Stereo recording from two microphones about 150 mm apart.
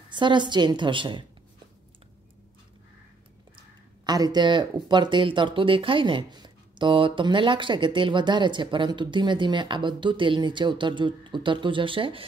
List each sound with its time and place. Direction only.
0.1 s speech: 30° right (ahead or behind)
4.0 s speech: 25° right (ahead or behind)